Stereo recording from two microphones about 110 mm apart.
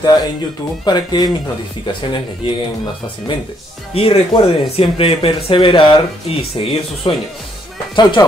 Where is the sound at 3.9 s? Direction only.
60° left (ahead or behind).